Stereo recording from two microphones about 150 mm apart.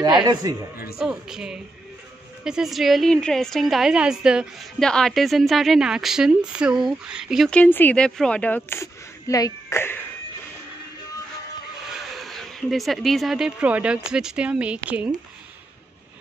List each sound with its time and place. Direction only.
0.2 s a man's voice: 25° right (ahead or behind)
0.9 s a woman's voice: 5° right (ahead or behind); by 10.0 s 15° left (ahead or behind)
11.9 s speech: centre (ahead or behind)